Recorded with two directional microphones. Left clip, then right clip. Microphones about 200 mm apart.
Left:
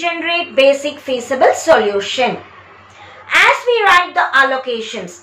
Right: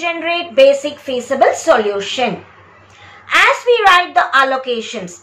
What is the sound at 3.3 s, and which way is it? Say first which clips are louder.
A woman's voice: even; 5° right (ahead or behind).